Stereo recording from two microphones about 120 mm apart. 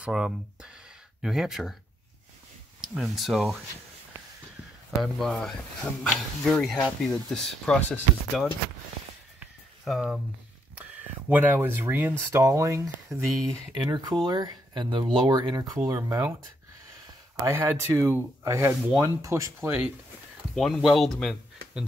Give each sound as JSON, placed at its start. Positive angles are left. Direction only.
{"t": 0.0, "sound": "speech", "side_deg": -5}
{"t": 2.8, "sound": "speech", "side_deg": -5}
{"t": 5.0, "sound": "speech", "side_deg": 5}
{"t": 9.8, "sound": "speech", "side_deg": 0}
{"t": 10.8, "sound": "speech", "side_deg": -15}
{"t": 17.5, "sound": "speech", "side_deg": -20}
{"t": 20.5, "sound": "speech", "side_deg": 0}